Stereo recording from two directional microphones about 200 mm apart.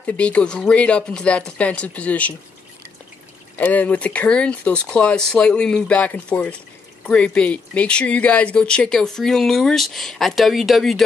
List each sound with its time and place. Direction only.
0.0 s speech: 5° left (ahead or behind)
3.5 s speech: 10° left (ahead or behind)